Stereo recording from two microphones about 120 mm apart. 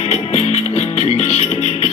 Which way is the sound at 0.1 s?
65° left (ahead or behind).